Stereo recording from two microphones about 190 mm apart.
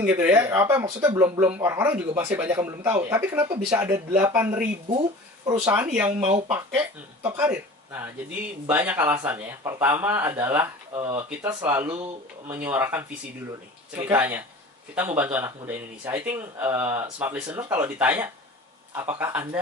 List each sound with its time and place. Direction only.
0.0 s speech: 10° right (ahead or behind)
3.4 s speech: 35° right (ahead or behind)
3.7 s speech: 10° right (ahead or behind)
4.8 s speech: 25° right (ahead or behind)
7.3 s speech: 10° right (ahead or behind)